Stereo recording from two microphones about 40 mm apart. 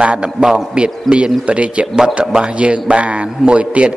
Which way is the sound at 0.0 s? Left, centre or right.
Right.